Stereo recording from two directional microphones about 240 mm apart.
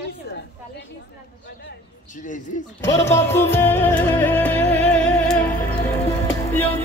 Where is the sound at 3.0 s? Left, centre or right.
Centre.